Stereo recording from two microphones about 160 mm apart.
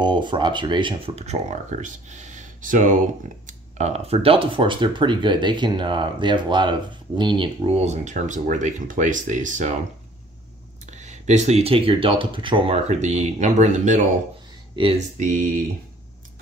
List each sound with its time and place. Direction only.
0.0 s speech: 30° right (ahead or behind); by 3.0 s 55° right (ahead or behind)
3.4 s speech: 45° right (ahead or behind)
10.9 s speech: 45° right (ahead or behind)
14.8 s speech: 35° right (ahead or behind)
15.1 s speech: 50° right (ahead or behind)